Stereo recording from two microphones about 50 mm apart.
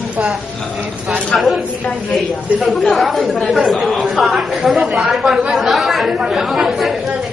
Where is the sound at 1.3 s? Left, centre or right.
Centre.